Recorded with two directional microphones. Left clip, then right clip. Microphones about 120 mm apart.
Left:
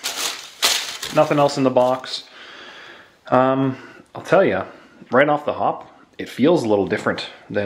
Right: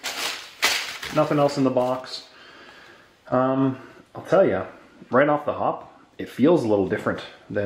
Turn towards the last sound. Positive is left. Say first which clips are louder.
# left 4 dB
turn(degrees=40)  # may be behind; listen again after turning